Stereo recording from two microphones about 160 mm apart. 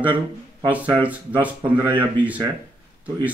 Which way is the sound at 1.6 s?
30° right (ahead or behind).